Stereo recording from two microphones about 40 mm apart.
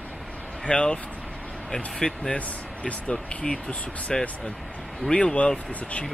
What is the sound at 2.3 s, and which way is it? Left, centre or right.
Speech, left.